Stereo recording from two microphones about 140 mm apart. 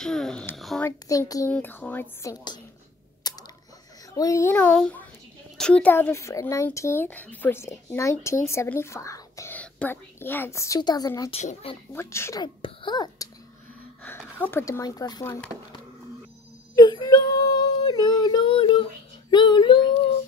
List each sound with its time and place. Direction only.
0.0 s a child's voice: 5° left (ahead or behind)
0.6 s a sound: centre (ahead or behind)
0.8 s speech: 25° left (ahead or behind)
1.5 s speech: 15° left (ahead or behind)
3.3 s a sound: 30° left (ahead or behind)
4.1 s speech: 25° left (ahead or behind)
12.4 s speech: 35° left (ahead or behind)
14.0 s speech: 15° left (ahead or behind)
16.7 s child singing: 30° left (ahead or behind)
19.3 s speech: 30° left (ahead or behind)